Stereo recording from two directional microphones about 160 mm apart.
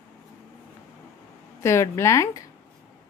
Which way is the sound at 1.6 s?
15° left (ahead or behind).